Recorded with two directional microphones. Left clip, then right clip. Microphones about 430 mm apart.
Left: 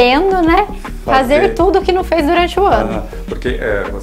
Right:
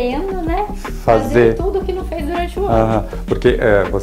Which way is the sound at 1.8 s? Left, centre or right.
Left.